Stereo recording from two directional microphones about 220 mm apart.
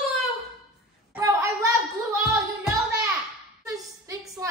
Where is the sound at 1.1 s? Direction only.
15° right (ahead or behind).